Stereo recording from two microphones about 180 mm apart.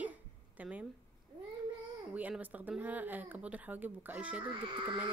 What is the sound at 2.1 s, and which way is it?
Speech, 10° right (ahead or behind).